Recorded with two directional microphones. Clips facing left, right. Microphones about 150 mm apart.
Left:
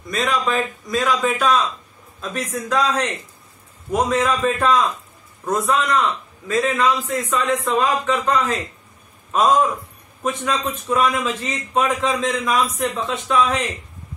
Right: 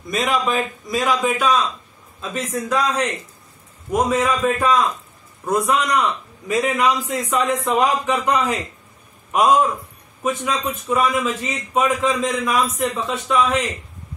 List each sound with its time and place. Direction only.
0.1 s a man's voice: 20° right (ahead or behind)
1.2 s a man's voice: 5° right (ahead or behind)
10.2 s a man's voice: 5° right (ahead or behind)